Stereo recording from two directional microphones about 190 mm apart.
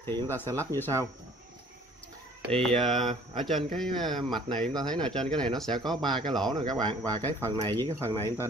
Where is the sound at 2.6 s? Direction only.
Centre (ahead or behind).